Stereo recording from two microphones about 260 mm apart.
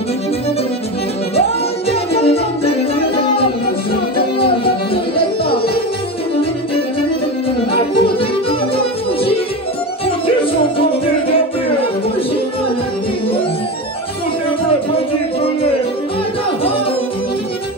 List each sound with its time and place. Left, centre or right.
1.9 s music: left
4.4 s music: left
7.9 s music: left
10.0 s music: left